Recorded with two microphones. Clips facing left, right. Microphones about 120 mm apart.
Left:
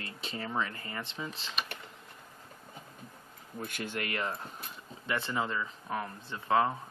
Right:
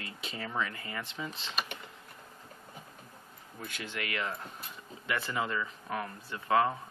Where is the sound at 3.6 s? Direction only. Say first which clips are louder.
Left 3 dB; 50° left (ahead or behind).